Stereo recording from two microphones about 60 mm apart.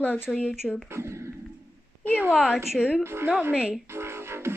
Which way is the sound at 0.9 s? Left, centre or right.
Right.